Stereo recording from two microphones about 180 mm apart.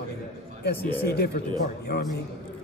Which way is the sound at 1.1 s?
65° left (ahead or behind).